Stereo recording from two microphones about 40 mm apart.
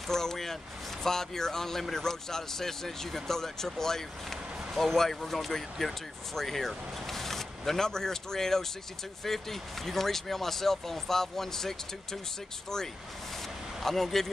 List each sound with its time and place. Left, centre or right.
0.1 s speech: centre